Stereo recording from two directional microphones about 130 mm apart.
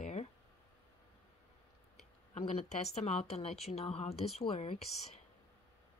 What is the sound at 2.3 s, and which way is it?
A woman's voice, 55° left (ahead or behind).